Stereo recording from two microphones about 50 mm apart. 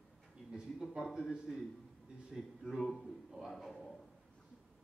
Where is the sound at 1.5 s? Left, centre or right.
Centre.